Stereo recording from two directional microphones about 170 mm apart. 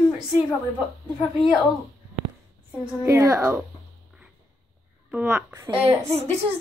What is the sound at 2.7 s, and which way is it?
A child's voice, 15° right (ahead or behind).